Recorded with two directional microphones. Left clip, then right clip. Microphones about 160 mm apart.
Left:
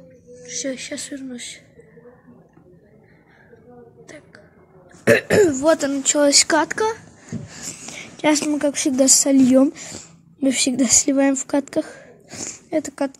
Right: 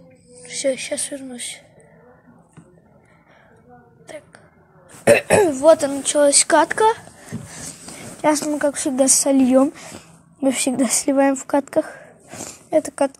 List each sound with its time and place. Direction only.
0.4 s speech: 40° right (ahead or behind)
5.3 s speech: 15° right (ahead or behind); by 6.5 s 5° left (ahead or behind)
6.5 s speech: 20° right (ahead or behind)
7.8 s a sound: 20° left (ahead or behind)
8.5 s speech: 5° left (ahead or behind)